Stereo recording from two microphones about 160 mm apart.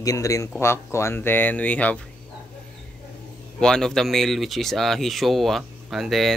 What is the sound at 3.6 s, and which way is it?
Speech, 5° left (ahead or behind).